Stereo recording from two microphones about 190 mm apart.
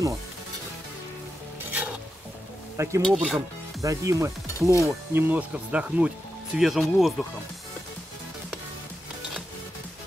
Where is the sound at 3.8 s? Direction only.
15° right (ahead or behind); by 7.1 s centre (ahead or behind).